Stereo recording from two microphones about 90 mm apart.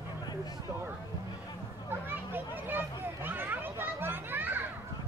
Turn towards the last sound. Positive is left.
turn(degrees=-20)  # may be behind; listen again after turning